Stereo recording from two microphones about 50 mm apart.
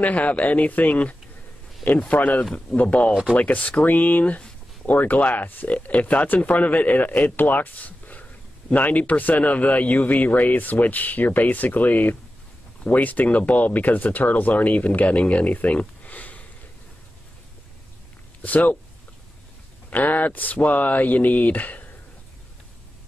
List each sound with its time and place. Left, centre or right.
0.0 s speech: left
15.6 s a sound: left
18.4 s speech: left
19.9 s speech: left